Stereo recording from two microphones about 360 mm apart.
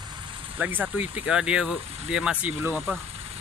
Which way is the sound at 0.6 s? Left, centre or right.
Centre.